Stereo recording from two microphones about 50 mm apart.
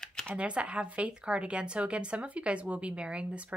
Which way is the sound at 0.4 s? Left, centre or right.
Right.